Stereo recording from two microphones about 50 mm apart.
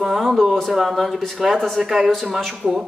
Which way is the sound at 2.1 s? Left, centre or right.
Centre.